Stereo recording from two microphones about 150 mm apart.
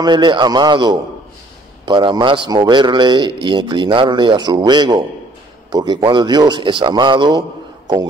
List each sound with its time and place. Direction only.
0.0 s a man's voice: 30° right (ahead or behind)